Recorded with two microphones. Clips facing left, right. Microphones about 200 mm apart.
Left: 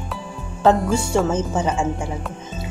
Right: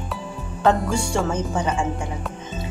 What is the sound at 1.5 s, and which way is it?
Speech, 25° left (ahead or behind).